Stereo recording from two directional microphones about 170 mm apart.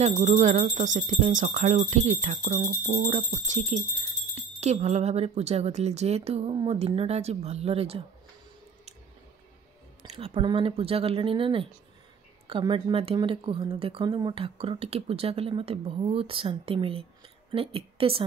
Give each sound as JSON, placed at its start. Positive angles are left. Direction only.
{"t": 0.0, "sound": "speech", "side_deg": -40}
{"t": 10.0, "sound": "a woman's voice", "side_deg": -35}